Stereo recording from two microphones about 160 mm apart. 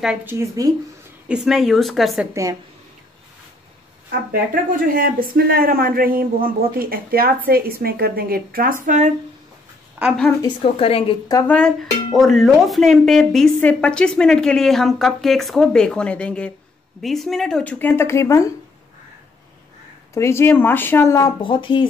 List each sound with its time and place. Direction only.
0.0 s speech: 10° right (ahead or behind)
1.3 s speech: 5° right (ahead or behind)
4.3 s speech: 60° right (ahead or behind)
8.8 s speech: 50° right (ahead or behind)
10.0 s a woman's voice: 10° right (ahead or behind)
10.4 s a woman's voice: 35° left (ahead or behind)
11.4 s speech: 5° left (ahead or behind)
20.2 s speech: 15° left (ahead or behind)
21.4 s a woman's voice: 30° left (ahead or behind)